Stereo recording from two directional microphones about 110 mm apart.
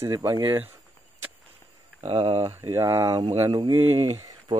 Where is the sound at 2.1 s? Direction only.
55° right (ahead or behind).